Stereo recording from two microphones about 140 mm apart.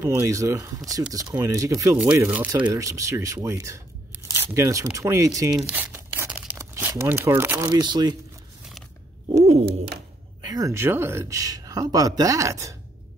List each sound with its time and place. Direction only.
0.0 s speech: 20° right (ahead or behind)
2.5 s speech: 25° right (ahead or behind)
5.7 s crumpling: 15° right (ahead or behind); by 8.2 s 30° right (ahead or behind)
10.4 s speech: 25° right (ahead or behind)